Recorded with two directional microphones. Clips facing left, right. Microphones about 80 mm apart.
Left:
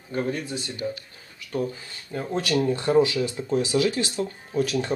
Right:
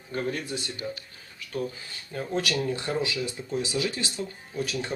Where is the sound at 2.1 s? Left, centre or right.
Left.